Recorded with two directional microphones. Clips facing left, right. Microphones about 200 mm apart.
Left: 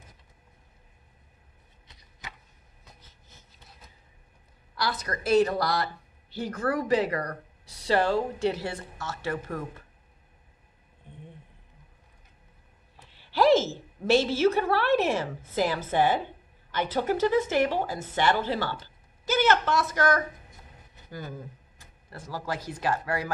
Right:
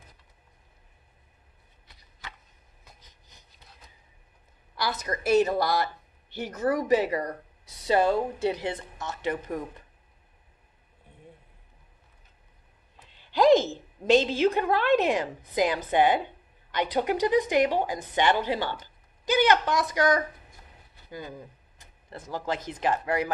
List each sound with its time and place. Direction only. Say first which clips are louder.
3.0 s train: left 2 dB; 15° right (ahead or behind)
5.0 s speech: even; 20° right (ahead or behind)
13.1 s a woman's voice: right 2 dB; 15° right (ahead or behind)